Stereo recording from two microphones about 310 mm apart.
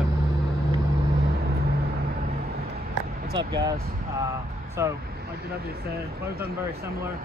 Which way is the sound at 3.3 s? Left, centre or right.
Centre.